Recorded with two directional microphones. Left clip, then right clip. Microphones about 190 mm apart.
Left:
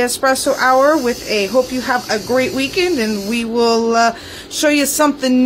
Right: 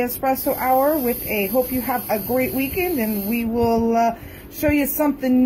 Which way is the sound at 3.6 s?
25° left (ahead or behind).